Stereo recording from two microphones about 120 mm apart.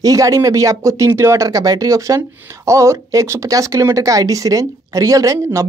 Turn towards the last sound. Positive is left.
turn(degrees=-25)  # may be behind; listen again after turning